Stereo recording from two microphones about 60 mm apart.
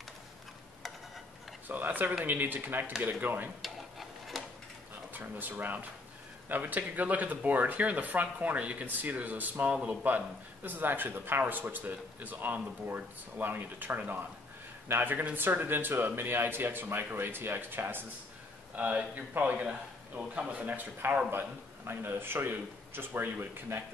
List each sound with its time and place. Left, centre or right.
1.7 s speech: right
3.6 s stir: centre
5.1 s a man's voice: right
18.8 s a man's voice: right